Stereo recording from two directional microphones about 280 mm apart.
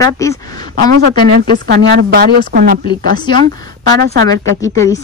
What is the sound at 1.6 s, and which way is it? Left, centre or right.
A woman's voice, right.